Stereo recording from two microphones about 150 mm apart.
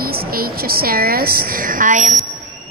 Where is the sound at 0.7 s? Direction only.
85° right; by 2.2 s 55° right (ahead or behind).